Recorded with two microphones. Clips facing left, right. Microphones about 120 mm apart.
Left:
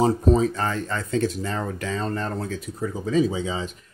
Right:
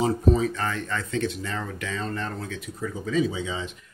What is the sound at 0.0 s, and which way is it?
Speech, 35° left (ahead or behind).